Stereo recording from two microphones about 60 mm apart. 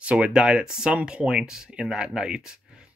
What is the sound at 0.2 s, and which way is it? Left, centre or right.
Speech, centre.